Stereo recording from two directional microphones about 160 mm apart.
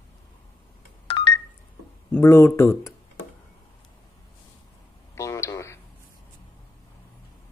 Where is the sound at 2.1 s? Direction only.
15° left (ahead or behind).